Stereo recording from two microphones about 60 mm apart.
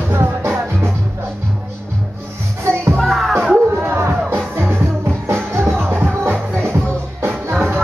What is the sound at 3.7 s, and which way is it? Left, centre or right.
Music, right.